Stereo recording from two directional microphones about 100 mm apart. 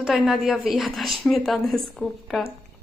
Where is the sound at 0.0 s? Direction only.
Centre (ahead or behind).